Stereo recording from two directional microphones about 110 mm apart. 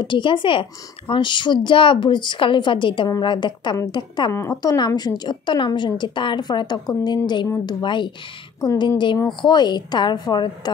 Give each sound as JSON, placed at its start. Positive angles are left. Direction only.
{"t": 0.0, "sound": "speech", "side_deg": 45}
{"t": 4.3, "sound": "a woman's voice", "side_deg": 30}